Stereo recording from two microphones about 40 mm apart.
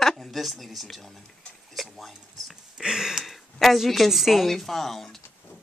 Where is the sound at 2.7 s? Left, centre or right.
Centre.